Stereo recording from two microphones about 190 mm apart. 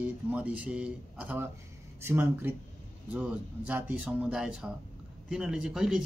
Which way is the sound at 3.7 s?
10° right (ahead or behind).